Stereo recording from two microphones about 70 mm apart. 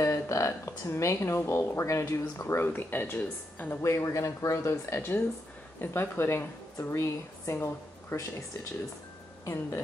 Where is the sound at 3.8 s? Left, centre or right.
Left.